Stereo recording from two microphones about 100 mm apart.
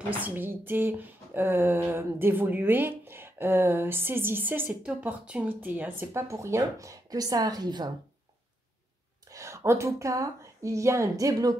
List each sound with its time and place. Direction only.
0.1 s speech: 15° right (ahead or behind); by 7.9 s 45° right (ahead or behind)
9.3 s speech: 30° right (ahead or behind)